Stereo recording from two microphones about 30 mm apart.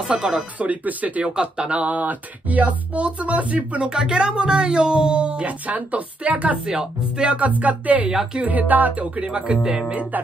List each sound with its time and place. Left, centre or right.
0.1 s speech: right
0.6 s speech: right
1.2 s speech: right
1.7 s speech: right
3.9 s speech: right
5.5 s speech: right
6.6 s speech: right
7.2 s speech: right
8.5 s music: right
8.9 s speech: right